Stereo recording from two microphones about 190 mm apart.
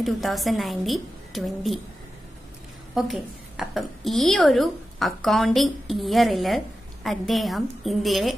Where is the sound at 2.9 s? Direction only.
Centre (ahead or behind).